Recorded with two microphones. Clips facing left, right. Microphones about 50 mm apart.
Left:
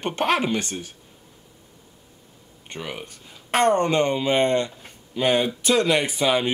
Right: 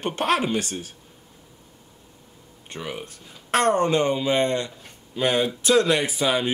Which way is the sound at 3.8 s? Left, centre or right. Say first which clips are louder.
Even; centre.